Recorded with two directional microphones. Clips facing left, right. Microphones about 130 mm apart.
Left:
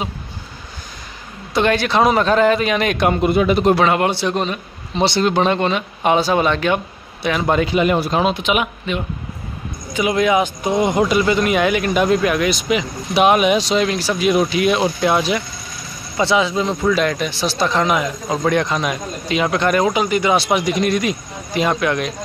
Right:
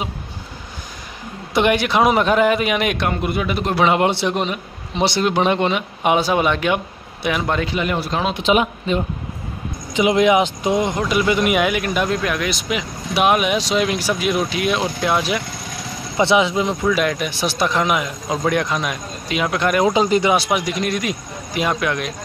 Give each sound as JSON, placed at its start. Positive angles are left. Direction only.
{"t": 1.5, "sound": "a man's voice", "side_deg": -15}
{"t": 3.1, "sound": "speech", "side_deg": 30}
{"t": 3.8, "sound": "a man's voice", "side_deg": -20}
{"t": 7.4, "sound": "speech", "side_deg": 10}
{"t": 8.4, "sound": "speech", "side_deg": -35}
{"t": 9.9, "sound": "speech", "side_deg": -20}
{"t": 10.8, "sound": "speech", "side_deg": 15}
{"t": 11.1, "sound": "speech", "side_deg": -10}
{"t": 14.2, "sound": "speech", "side_deg": 0}
{"t": 16.2, "sound": "speech", "side_deg": -20}
{"t": 16.8, "sound": "speech", "side_deg": -5}
{"t": 19.9, "sound": "speech", "side_deg": -30}
{"t": 20.2, "sound": "speech", "side_deg": -5}